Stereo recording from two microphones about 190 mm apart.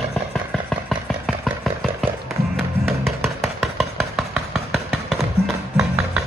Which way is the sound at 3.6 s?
Centre (ahead or behind).